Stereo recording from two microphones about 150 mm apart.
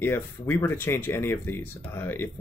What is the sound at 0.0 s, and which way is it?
Speech, 15° left (ahead or behind).